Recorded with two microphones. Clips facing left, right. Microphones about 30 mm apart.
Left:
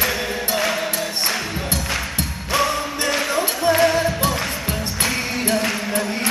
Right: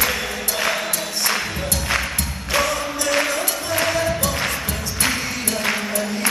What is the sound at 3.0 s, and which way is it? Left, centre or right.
Music, left.